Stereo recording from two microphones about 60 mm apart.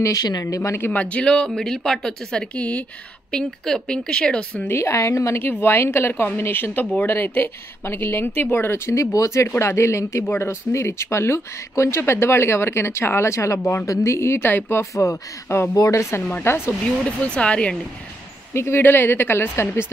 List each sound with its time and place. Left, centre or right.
0.0 s speech: left
0.7 s speech: left
0.9 s a woman's voice: centre
3.3 s a woman's voice: centre
4.6 s speech: left
5.4 s speech: left
8.9 s speech: left
9.6 s speech: left
15.0 s speech: left
16.3 s speech: left
17.2 s speech: centre
18.5 s speech: left
18.8 s speech: left